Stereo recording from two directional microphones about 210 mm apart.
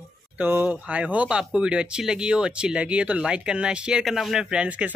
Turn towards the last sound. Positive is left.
turn(degrees=-5)  # may be behind; listen again after turning